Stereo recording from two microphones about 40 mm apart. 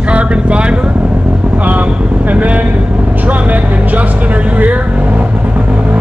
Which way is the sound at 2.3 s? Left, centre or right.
Right.